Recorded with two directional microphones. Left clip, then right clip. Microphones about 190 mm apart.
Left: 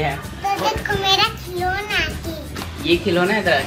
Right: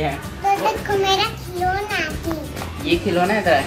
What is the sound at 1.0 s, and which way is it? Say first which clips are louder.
A child's voice: left 4 dB; 25° right (ahead or behind).